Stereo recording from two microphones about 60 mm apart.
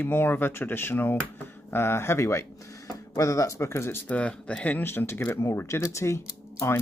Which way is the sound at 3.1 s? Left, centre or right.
Left.